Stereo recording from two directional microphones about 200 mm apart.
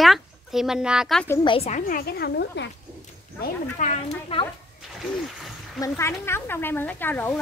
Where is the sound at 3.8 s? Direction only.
25° left (ahead or behind).